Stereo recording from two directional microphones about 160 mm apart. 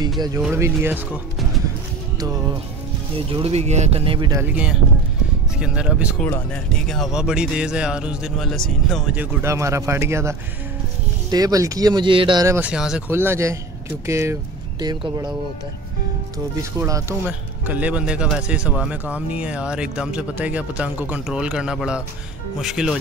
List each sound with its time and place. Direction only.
0.4 s speech: 10° right (ahead or behind)
3.3 s speech: 40° right (ahead or behind)
4.3 s a man's voice: 10° right (ahead or behind)
9.1 s speech: 15° right (ahead or behind); by 12.4 s 30° right (ahead or behind)
12.4 s speech: 10° right (ahead or behind)
13.1 s speech: 15° right (ahead or behind)
17.2 s a man's voice: 10° right (ahead or behind)